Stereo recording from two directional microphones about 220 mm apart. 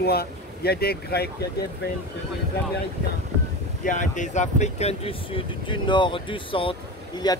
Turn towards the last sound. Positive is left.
turn(degrees=20)  # may be behind; listen again after turning